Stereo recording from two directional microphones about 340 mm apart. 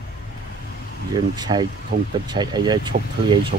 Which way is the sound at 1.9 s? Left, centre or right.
Right.